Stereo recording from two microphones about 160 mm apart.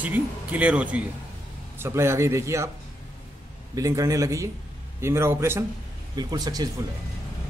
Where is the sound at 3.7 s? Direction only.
20° right (ahead or behind).